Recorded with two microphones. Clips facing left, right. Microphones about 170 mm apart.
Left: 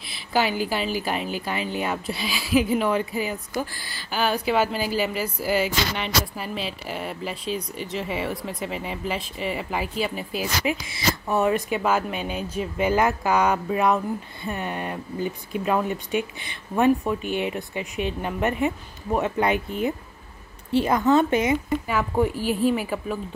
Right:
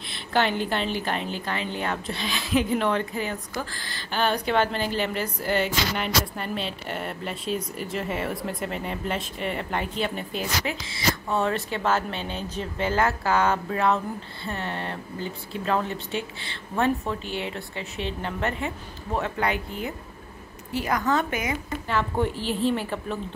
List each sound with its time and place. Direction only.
0.1 s a woman's voice: 5° left (ahead or behind); by 21.7 s 25° left (ahead or behind)
21.8 s speech: 10° left (ahead or behind)